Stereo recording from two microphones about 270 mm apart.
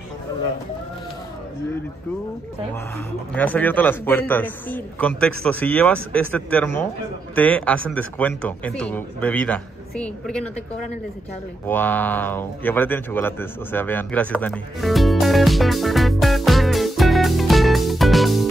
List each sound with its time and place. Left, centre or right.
3.3 s a man's voice: centre
11.6 s speech: centre